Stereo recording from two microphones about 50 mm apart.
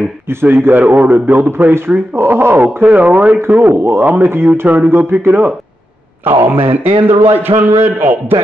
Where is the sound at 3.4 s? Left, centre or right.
Right.